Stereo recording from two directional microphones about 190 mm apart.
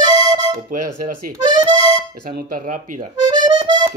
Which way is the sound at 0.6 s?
45° right (ahead or behind).